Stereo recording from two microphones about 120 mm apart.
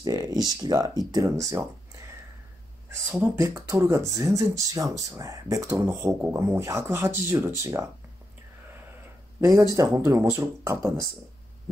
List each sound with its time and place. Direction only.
0.0 s speech: 30° right (ahead or behind)
3.1 s speech: 15° right (ahead or behind)
9.4 s speech: 30° right (ahead or behind)